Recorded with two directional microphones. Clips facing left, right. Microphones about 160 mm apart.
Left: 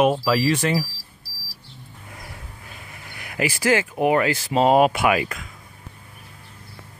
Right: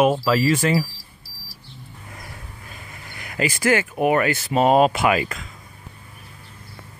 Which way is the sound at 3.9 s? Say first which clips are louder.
Even; 20° left (ahead or behind).